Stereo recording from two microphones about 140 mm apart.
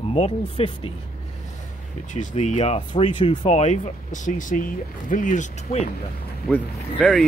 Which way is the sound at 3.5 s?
55° left (ahead or behind).